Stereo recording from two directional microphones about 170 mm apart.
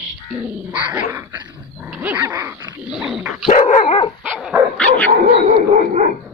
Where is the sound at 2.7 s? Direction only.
5° right (ahead or behind).